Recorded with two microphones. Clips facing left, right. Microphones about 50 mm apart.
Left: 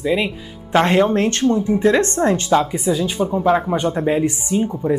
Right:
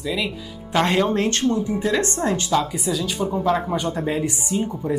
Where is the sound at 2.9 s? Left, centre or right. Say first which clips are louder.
Left 5 dB; left.